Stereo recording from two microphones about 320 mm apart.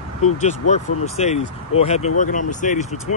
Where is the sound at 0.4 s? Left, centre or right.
Left.